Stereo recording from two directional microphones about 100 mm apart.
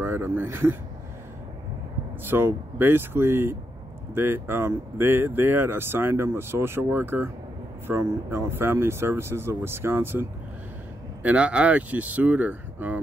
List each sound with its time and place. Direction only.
0.0 s speech: 20° right (ahead or behind)
2.2 s speech: 20° right (ahead or behind)
11.2 s speech: 10° right (ahead or behind)